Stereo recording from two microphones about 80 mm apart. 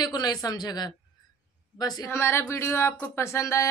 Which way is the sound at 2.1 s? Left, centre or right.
Left.